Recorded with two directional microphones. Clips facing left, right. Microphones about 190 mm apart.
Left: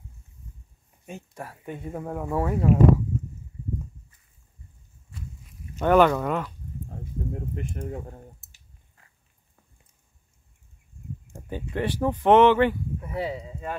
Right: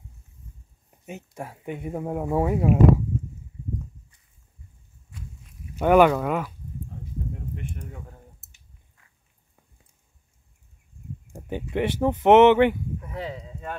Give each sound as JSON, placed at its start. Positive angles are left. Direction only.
{"t": 1.0, "sound": "speech", "side_deg": -20}
{"t": 5.8, "sound": "speech", "side_deg": -10}
{"t": 7.5, "sound": "a sound", "side_deg": 40}
{"t": 11.3, "sound": "speech", "side_deg": -20}
{"t": 13.0, "sound": "speech", "side_deg": 10}